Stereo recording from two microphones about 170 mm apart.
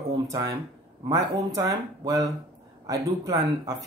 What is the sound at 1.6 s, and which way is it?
Speech, 20° right (ahead or behind).